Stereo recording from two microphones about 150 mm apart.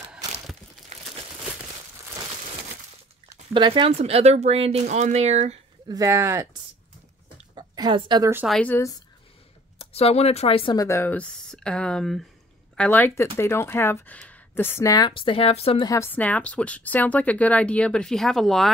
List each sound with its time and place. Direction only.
0.9 s crumpling: 50° right (ahead or behind)
3.5 s speech: 30° right (ahead or behind)
4.0 s speech: 45° right (ahead or behind)
5.9 s speech: 20° right (ahead or behind)
7.5 s a sound: 30° right (ahead or behind)
8.5 s a woman's voice: 10° left (ahead or behind)
9.8 s speech: 40° left (ahead or behind)
10.8 s a woman's voice: 15° left (ahead or behind); by 15.9 s 40° left (ahead or behind)
15.9 s a woman's voice: 15° left (ahead or behind)